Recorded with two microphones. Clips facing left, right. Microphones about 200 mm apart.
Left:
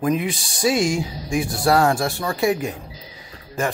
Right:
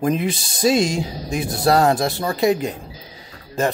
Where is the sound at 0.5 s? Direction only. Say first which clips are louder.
Right 2 dB; 20° right (ahead or behind).